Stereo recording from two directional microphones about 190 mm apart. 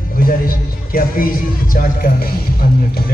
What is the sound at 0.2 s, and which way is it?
Music, 50° left (ahead or behind).